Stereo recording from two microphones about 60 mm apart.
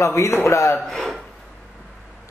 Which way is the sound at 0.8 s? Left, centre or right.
Centre.